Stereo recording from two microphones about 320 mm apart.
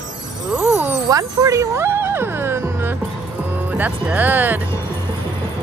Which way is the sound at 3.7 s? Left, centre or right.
Centre.